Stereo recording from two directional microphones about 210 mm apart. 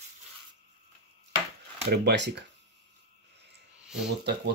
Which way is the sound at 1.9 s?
50° right (ahead or behind).